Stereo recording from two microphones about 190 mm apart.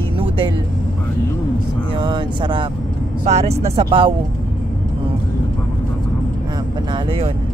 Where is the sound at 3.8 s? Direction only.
25° right (ahead or behind).